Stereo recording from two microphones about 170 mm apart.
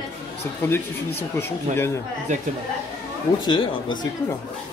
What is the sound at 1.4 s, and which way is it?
Speech, 15° left (ahead or behind).